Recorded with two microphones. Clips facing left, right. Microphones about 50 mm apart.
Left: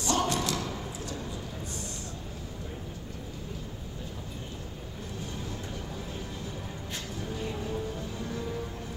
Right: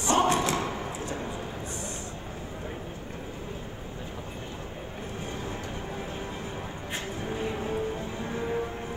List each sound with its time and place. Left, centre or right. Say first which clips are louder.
0.0 s thump: right 5 dB; right
7.2 s music: right 3 dB; right